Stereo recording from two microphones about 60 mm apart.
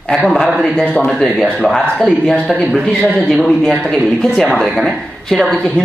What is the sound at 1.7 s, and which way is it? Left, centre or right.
Speech, centre.